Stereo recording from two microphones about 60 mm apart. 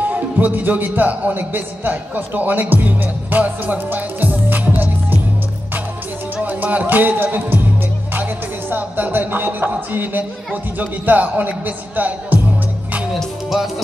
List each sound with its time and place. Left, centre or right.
0.0 s speech: right
6.3 s music: right
7.3 s speech: right
13.5 s music: centre